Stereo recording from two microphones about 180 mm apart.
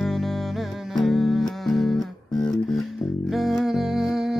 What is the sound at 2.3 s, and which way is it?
Music, 20° left (ahead or behind).